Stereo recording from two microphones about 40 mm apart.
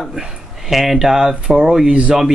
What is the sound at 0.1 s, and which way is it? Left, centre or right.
Speech, centre.